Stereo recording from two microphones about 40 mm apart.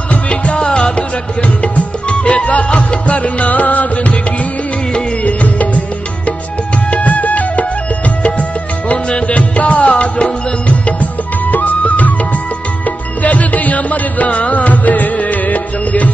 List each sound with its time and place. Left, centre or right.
0.1 s music: left
2.0 s music: left
6.9 s music: left